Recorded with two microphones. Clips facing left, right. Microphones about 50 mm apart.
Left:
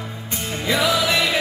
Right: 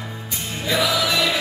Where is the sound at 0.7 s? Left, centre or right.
Left.